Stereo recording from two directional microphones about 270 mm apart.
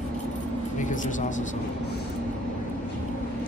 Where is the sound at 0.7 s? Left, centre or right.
Left.